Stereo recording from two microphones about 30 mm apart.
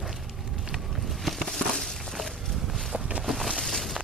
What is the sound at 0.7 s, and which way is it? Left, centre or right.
Vehicle, centre.